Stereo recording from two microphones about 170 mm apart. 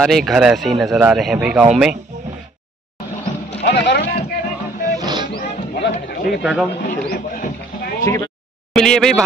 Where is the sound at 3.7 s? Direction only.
80° left.